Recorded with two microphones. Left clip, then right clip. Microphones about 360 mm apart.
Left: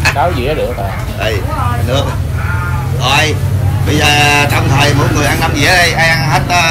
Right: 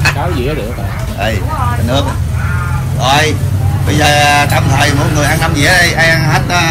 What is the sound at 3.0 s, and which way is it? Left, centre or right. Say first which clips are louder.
Speech: right 1 dB; centre.